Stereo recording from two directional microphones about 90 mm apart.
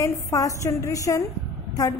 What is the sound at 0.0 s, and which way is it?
A woman's voice, 40° left (ahead or behind).